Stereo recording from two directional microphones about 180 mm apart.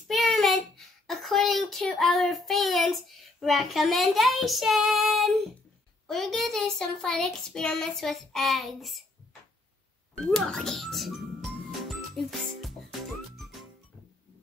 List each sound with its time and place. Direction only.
0.1 s child singing: centre (ahead or behind)
6.0 s speech: centre (ahead or behind)
10.3 s music: 5° left (ahead or behind)